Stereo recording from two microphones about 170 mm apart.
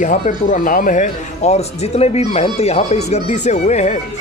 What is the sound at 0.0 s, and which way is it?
Speech, 50° left (ahead or behind).